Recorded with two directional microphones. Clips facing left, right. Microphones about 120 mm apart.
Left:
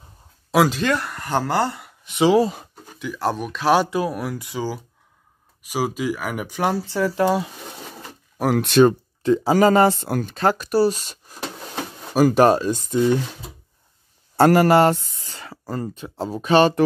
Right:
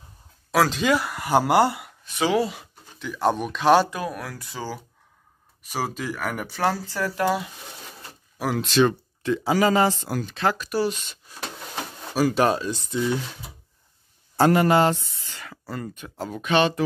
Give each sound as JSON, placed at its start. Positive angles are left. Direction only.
{"t": 0.7, "sound": "speech", "side_deg": 0}
{"t": 2.0, "sound": "speech", "side_deg": 20}
{"t": 2.3, "sound": "speech", "side_deg": 40}
{"t": 3.0, "sound": "speech", "side_deg": 0}
{"t": 3.9, "sound": "speech", "side_deg": 25}
{"t": 8.4, "sound": "speech", "side_deg": 55}
{"t": 8.8, "sound": "speech", "side_deg": 35}
{"t": 14.3, "sound": "speech", "side_deg": 60}